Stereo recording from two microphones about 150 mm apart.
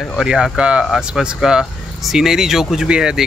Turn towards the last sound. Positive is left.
turn(degrees=-5)  # may be behind; listen again after turning